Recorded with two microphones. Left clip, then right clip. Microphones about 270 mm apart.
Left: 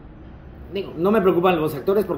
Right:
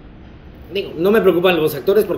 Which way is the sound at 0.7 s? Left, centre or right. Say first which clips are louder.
Right 5 dB; centre.